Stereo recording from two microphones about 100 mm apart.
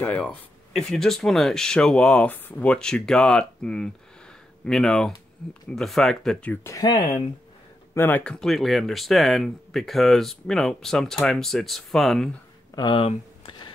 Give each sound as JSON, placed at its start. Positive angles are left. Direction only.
{"t": 0.1, "sound": "speech", "side_deg": 10}
{"t": 6.5, "sound": "speech", "side_deg": 25}
{"t": 6.8, "sound": "speech", "side_deg": 50}
{"t": 7.9, "sound": "speech", "side_deg": 25}
{"t": 8.2, "sound": "speech", "side_deg": 10}
{"t": 12.7, "sound": "speech", "side_deg": 45}